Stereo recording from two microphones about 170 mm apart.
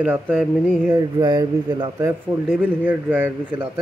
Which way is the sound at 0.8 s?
25° right (ahead or behind).